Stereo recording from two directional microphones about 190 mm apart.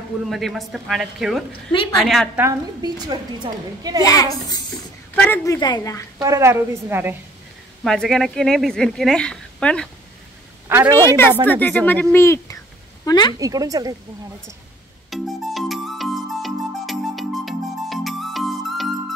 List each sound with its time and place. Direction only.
0.3 s a woman's voice: centre (ahead or behind)
2.4 s a woman's voice: 20° right (ahead or behind)
4.0 s speech: 20° left (ahead or behind)
6.2 s a woman's voice: 15° right (ahead or behind)
7.8 s a woman's voice: centre (ahead or behind)
10.7 s a woman's voice: 15° right (ahead or behind)
11.6 s speech: 10° left (ahead or behind)
13.4 s a woman's voice: 20° right (ahead or behind)
15.0 s music: centre (ahead or behind)